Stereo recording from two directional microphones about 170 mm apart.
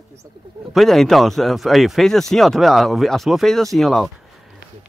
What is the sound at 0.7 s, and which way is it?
Speech, centre (ahead or behind).